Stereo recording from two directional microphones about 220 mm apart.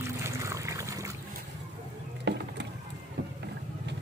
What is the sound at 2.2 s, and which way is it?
Music, 50° right (ahead or behind).